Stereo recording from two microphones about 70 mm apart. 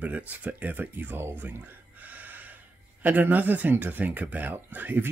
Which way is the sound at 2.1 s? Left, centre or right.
Right.